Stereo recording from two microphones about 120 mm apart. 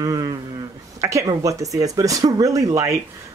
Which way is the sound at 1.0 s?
25° right (ahead or behind).